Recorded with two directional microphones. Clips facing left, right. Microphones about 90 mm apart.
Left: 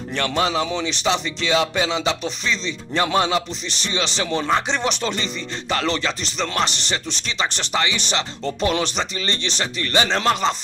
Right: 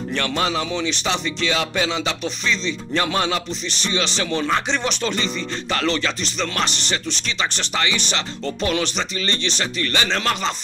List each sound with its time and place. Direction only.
0.1 s speech: 20° left (ahead or behind)